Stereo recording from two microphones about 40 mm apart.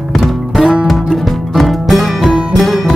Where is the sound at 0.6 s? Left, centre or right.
Right.